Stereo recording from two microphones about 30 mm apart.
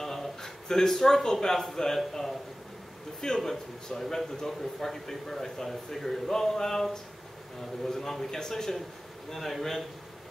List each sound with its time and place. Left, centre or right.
0.0 s a man's voice: centre
3.2 s speech: left
4.5 s a man's voice: centre